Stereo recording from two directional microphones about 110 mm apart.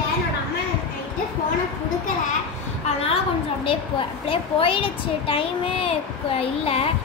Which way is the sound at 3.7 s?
55° left (ahead or behind).